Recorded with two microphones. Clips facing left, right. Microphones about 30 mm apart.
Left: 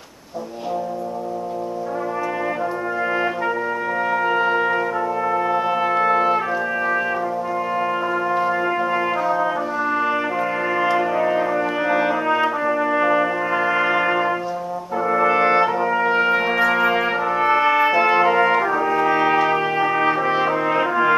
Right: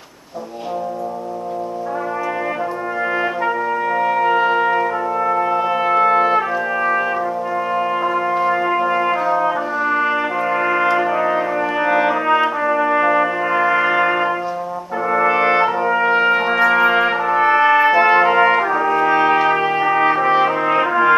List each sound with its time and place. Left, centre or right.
4.0 s trumpet: centre